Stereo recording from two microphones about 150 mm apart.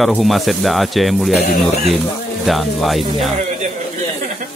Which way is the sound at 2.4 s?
Centre (ahead or behind).